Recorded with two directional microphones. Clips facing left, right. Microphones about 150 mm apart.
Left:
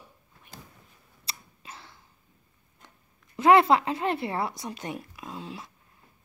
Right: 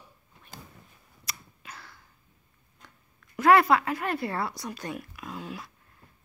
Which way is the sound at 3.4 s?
20° left (ahead or behind).